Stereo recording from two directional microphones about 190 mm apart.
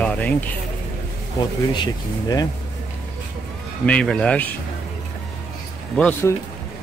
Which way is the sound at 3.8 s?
5° left (ahead or behind).